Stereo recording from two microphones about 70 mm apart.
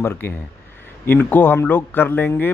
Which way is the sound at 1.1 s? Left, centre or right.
Left.